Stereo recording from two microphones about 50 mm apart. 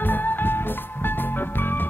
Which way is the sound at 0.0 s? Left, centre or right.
Left.